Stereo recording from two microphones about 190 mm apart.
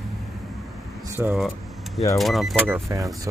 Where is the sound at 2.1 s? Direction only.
Centre (ahead or behind).